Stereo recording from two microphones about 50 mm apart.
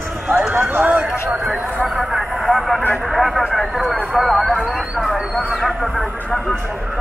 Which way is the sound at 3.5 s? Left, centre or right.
Centre.